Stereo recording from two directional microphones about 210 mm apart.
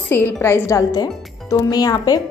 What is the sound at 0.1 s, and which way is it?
Speech, 10° left (ahead or behind).